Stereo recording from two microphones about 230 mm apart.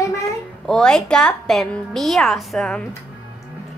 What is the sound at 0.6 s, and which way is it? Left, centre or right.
A woman's voice, centre.